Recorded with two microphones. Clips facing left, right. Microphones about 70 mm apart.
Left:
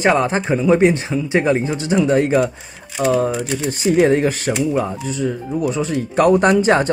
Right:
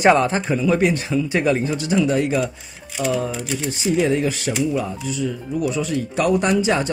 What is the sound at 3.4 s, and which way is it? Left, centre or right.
Speech, left.